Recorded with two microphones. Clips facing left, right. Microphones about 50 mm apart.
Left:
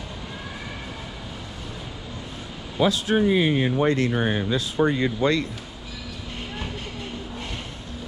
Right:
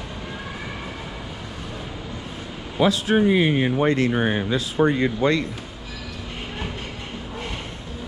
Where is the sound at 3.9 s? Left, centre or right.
Right.